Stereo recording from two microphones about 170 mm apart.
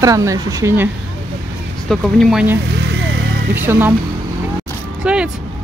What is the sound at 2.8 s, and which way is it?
Vehicle, 90° right.